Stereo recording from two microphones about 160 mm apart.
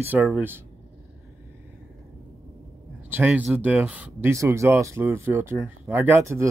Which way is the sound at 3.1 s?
10° right (ahead or behind).